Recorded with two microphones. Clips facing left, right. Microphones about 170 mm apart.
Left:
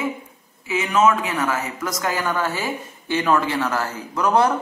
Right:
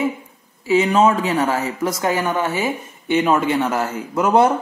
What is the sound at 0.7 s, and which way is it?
A woman's voice, 35° right (ahead or behind).